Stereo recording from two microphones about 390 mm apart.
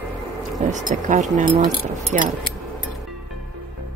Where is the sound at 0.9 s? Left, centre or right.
Centre.